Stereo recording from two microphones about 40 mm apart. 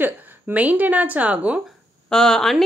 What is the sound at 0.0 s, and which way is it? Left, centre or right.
A woman's voice, right.